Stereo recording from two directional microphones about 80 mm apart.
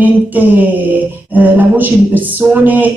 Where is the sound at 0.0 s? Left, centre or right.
Right.